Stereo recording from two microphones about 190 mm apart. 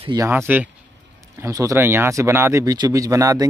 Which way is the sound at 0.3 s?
10° right (ahead or behind).